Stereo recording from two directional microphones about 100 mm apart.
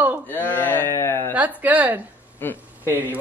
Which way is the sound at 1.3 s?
15° right (ahead or behind).